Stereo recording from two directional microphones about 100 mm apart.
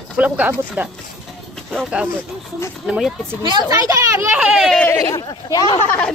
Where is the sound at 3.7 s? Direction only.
35° right (ahead or behind).